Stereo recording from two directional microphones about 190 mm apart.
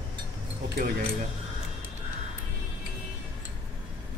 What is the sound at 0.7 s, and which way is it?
Speech, 50° right (ahead or behind).